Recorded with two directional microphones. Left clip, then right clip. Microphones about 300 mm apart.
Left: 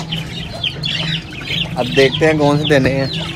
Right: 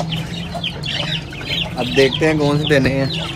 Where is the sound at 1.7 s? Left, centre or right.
Centre.